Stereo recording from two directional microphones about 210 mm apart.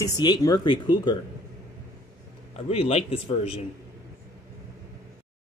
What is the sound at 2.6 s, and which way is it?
Speech, 30° left (ahead or behind).